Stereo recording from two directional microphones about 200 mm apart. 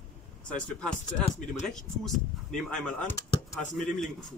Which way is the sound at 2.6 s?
5° left (ahead or behind).